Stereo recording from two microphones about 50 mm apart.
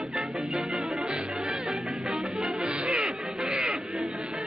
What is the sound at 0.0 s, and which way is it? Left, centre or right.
Music, centre.